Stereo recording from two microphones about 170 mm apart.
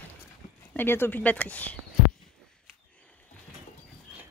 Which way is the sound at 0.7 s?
15° left (ahead or behind).